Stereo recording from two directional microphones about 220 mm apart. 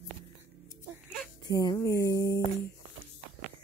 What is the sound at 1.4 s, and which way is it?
Speech, 15° left (ahead or behind).